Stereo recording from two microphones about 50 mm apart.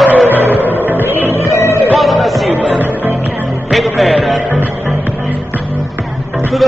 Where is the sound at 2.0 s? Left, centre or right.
Centre.